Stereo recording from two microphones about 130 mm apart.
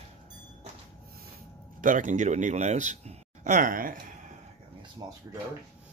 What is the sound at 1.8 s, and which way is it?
Speech, 90° right.